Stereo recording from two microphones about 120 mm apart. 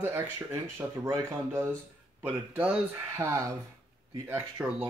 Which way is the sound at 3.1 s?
25° right (ahead or behind).